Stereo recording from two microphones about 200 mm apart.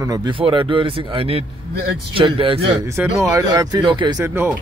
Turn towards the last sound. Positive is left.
turn(degrees=-10)  # may be behind; listen again after turning